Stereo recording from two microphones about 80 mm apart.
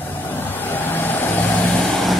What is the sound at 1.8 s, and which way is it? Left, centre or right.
Vehicle, centre.